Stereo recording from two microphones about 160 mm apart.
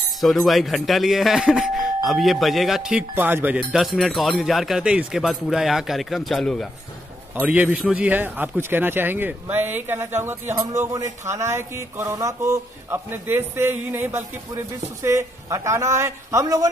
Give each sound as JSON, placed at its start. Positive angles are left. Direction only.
{"t": 0.2, "sound": "speech", "side_deg": 0}
{"t": 3.7, "sound": "speech", "side_deg": 0}
{"t": 7.3, "sound": "speech", "side_deg": -10}